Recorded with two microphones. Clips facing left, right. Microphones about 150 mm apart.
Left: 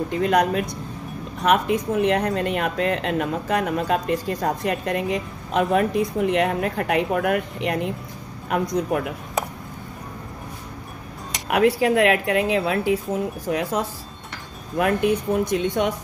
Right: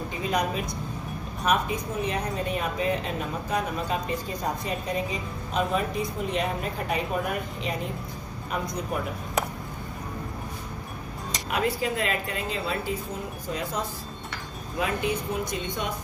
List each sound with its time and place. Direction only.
0.1 s speech: 75° left (ahead or behind)
11.4 s speech: 65° left (ahead or behind)
14.8 s speech: 60° left (ahead or behind)